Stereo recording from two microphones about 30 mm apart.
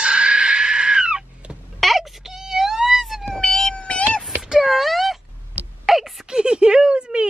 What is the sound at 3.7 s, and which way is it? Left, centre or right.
Meow, left.